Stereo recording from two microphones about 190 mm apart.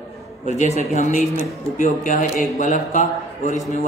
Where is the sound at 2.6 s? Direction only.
40° left (ahead or behind).